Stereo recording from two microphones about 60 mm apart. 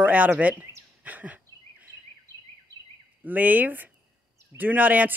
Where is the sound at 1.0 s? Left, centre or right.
Right.